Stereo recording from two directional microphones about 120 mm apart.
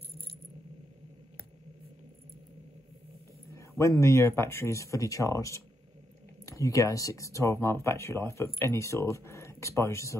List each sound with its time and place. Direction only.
3.4 s speech: 25° left (ahead or behind)